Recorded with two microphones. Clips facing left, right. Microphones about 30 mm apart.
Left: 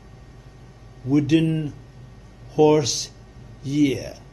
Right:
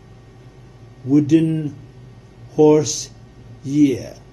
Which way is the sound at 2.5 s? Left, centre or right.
Left.